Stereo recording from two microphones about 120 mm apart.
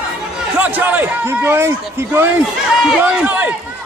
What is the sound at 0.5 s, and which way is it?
A man's voice, 15° right (ahead or behind).